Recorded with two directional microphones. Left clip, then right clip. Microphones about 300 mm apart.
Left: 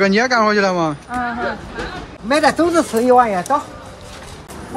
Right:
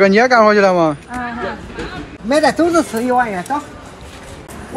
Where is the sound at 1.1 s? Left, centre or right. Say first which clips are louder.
Left 2 dB; left.